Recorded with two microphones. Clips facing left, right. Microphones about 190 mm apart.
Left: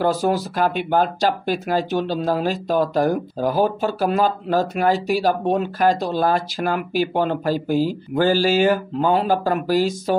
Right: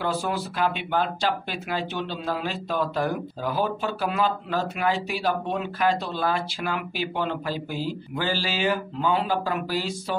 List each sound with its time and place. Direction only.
0.0 s speech: 40° left (ahead or behind)